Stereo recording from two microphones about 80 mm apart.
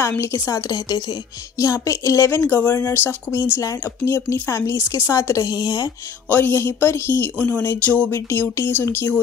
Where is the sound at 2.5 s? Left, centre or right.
Left.